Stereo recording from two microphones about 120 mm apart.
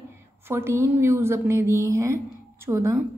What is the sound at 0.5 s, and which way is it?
A woman's voice, 20° right (ahead or behind).